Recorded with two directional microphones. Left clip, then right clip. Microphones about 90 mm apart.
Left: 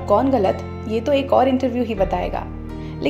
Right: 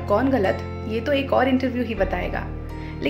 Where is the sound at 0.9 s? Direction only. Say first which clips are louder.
Left 4 dB; 35° left (ahead or behind).